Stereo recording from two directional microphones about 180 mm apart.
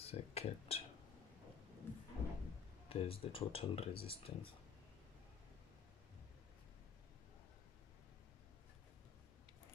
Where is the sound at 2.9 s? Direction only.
30° left (ahead or behind).